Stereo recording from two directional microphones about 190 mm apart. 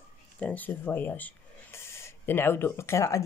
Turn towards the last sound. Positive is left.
turn(degrees=15)  # may be behind; listen again after turning